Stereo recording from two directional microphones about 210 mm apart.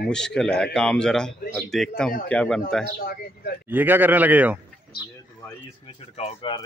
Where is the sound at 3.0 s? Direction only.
45° left (ahead or behind).